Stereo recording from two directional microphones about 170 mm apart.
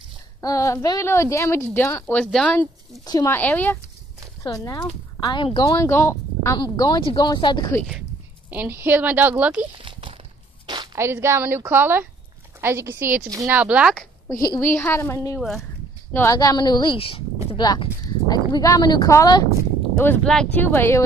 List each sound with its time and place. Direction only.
0.4 s speech: 20° left (ahead or behind)
3.1 s speech: 20° left (ahead or behind)
3.3 s speech: 10° left (ahead or behind)
6.6 s speech: 25° left (ahead or behind)
8.5 s speech: 10° right (ahead or behind)
9.8 s a sound: 30° right (ahead or behind)
11.0 s speech: 15° right (ahead or behind)
13.6 s speech: 5° right (ahead or behind)
14.3 s speech: 20° left (ahead or behind)
20.0 s speech: 10° left (ahead or behind)